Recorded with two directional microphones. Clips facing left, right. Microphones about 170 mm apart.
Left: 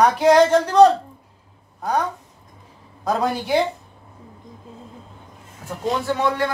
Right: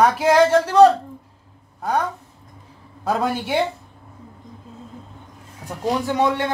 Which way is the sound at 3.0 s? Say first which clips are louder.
Even; 5° right (ahead or behind).